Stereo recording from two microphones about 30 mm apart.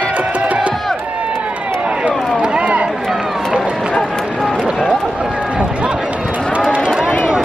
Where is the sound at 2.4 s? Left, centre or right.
Right.